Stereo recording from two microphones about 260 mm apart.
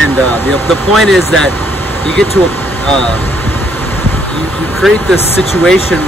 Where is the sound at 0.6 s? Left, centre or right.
Centre.